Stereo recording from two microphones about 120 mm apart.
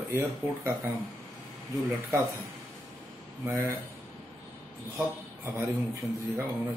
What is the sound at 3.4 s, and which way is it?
Speech, 20° right (ahead or behind).